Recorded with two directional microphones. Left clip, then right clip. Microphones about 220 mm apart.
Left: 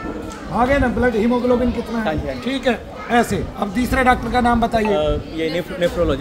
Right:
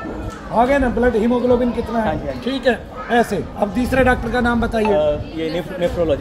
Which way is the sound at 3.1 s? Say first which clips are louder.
Right 1 dB; 10° left (ahead or behind).